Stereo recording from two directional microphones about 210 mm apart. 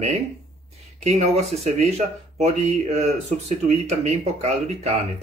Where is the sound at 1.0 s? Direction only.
30° right (ahead or behind).